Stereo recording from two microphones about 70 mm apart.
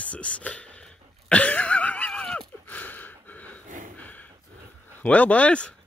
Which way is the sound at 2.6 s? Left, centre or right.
Left.